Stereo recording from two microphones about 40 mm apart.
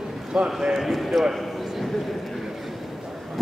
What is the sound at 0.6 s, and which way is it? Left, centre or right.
A man's voice, centre.